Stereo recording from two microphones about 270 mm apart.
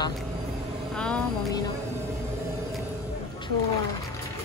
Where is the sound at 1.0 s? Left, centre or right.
Centre.